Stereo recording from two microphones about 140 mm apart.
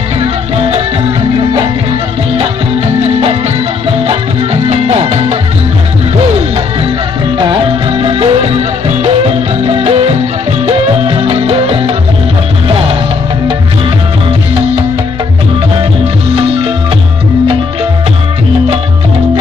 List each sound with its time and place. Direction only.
0.2 s music: 45° right (ahead or behind)
3.0 s music: 45° right (ahead or behind)
7.3 s music: 35° right (ahead or behind)
16.3 s music: 40° right (ahead or behind)